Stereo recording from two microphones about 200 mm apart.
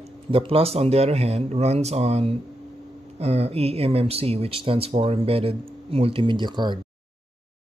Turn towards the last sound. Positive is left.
turn(degrees=-20)  # may be behind; listen again after turning